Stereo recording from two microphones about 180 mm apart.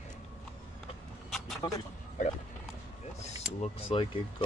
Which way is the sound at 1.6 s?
20° left (ahead or behind).